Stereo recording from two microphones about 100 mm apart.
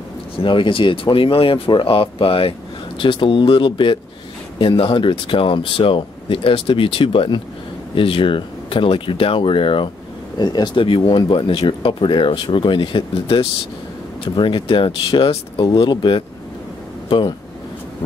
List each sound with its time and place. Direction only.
0.4 s speech: 55° left (ahead or behind)
10.4 s speech: 45° left (ahead or behind)